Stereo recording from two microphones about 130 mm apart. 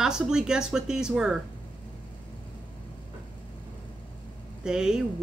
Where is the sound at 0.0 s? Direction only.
5° right (ahead or behind).